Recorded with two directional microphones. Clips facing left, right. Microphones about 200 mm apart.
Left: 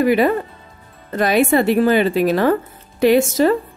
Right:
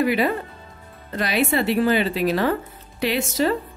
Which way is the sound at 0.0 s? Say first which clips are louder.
Left 5 dB; 45° left (ahead or behind).